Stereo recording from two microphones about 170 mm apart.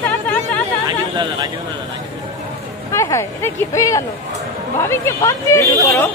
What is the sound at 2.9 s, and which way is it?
Speech, 15° left (ahead or behind).